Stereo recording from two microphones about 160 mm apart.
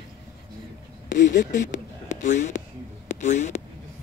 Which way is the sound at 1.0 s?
50° left (ahead or behind).